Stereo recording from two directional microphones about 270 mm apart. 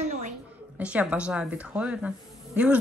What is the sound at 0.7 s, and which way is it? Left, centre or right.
Speech, centre.